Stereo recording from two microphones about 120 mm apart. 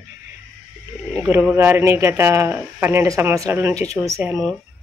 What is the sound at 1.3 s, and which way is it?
Speech, 15° right (ahead or behind).